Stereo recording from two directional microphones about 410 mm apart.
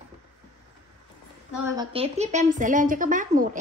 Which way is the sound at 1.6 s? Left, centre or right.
Centre.